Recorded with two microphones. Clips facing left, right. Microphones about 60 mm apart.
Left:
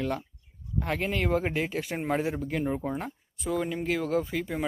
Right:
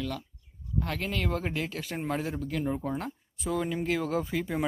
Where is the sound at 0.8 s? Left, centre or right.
Centre.